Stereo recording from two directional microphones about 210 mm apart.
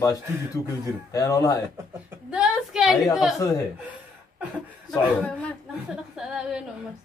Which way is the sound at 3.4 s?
15° left (ahead or behind).